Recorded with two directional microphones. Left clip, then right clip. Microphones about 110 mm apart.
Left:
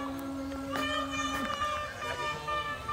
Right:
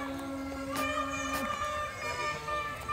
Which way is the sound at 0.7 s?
15° left (ahead or behind).